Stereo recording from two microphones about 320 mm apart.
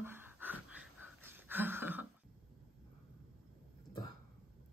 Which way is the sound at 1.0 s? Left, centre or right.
Centre.